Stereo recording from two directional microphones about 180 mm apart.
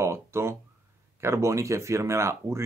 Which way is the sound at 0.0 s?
15° right (ahead or behind).